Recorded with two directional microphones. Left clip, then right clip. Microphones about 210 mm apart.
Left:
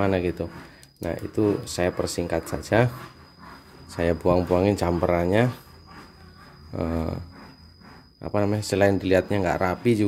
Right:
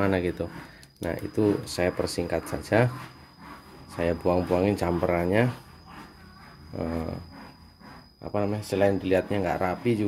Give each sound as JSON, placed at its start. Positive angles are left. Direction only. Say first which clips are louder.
{"t": 0.0, "sound": "speech", "louder": "left 2 dB", "side_deg": 10}
{"t": 3.9, "sound": "speech", "louder": "left 3 dB", "side_deg": 20}
{"t": 6.7, "sound": "speech", "louder": "left 3 dB", "side_deg": 25}
{"t": 8.2, "sound": "speech", "louder": "left 4 dB", "side_deg": 30}